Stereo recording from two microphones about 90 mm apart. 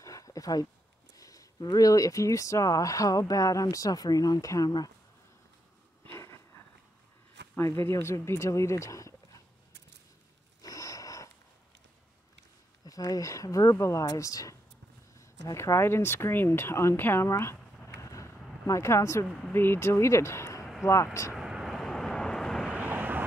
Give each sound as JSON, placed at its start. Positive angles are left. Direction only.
{"t": 0.0, "sound": "a sound", "side_deg": 40}
{"t": 1.1, "sound": "speech", "side_deg": 40}
{"t": 6.1, "sound": "a sound", "side_deg": 30}
{"t": 7.5, "sound": "speech", "side_deg": 30}
{"t": 10.6, "sound": "wheeze", "side_deg": 40}
{"t": 12.8, "sound": "speech", "side_deg": 45}
{"t": 21.4, "sound": "vehicle", "side_deg": -5}
{"t": 22.8, "sound": "vehicle", "side_deg": -20}